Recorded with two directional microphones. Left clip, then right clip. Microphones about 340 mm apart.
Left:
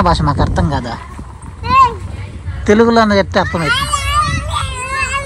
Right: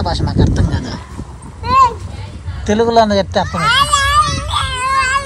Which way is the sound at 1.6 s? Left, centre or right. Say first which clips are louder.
Left 1 dB; centre.